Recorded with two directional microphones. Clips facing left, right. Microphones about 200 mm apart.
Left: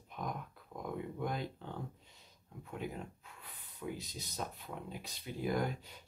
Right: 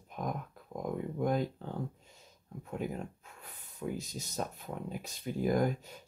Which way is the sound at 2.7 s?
45° right (ahead or behind).